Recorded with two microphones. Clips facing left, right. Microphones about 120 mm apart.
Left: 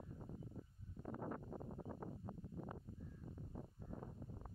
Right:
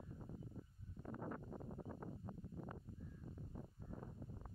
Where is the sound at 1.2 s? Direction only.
25° left (ahead or behind).